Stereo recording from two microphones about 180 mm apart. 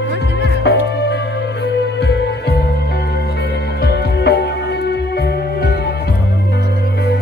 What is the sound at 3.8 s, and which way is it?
Music, 65° left (ahead or behind).